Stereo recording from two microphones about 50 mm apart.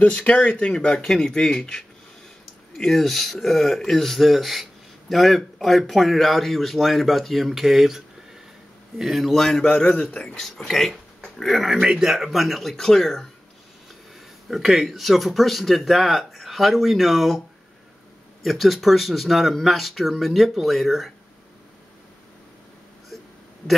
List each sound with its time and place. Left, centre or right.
0.0 s speech: left
2.8 s a man's voice: centre
9.7 s a man's voice: centre
10.7 s a man's voice: centre
11.8 s speech: centre
12.1 s a man's voice: centre
14.5 s a man's voice: centre
18.4 s a man's voice: centre